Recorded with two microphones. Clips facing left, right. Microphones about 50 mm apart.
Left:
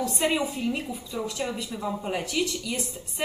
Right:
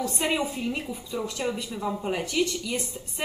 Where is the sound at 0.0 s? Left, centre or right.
Centre.